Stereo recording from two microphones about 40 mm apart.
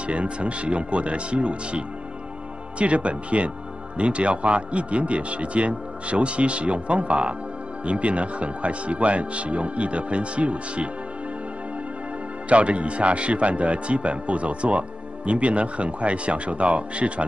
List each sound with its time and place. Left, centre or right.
0.0 s a man's voice: right
12.4 s a man's voice: right